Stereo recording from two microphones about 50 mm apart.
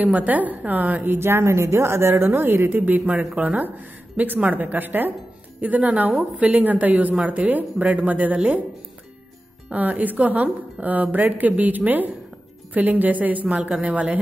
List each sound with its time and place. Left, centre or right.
0.0 s a woman's voice: right
2.8 s a woman's voice: right
9.7 s a woman's voice: right